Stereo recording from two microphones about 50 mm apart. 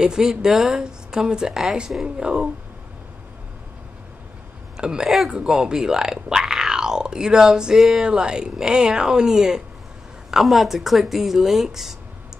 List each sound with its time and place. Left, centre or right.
0.0 s speech: centre
4.7 s speech: centre
10.3 s speech: centre